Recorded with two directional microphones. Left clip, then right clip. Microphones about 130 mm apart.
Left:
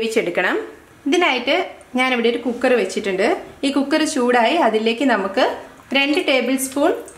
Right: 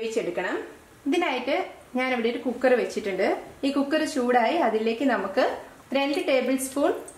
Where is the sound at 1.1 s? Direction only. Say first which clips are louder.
Left 8 dB; 30° left (ahead or behind).